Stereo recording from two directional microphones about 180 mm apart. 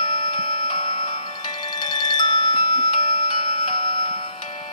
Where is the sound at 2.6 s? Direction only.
40° left (ahead or behind).